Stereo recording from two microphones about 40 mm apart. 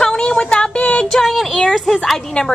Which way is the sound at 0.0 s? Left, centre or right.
Centre.